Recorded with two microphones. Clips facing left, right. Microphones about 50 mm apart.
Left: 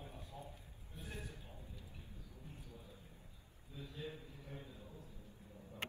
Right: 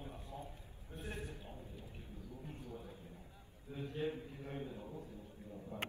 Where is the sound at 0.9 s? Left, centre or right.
Right.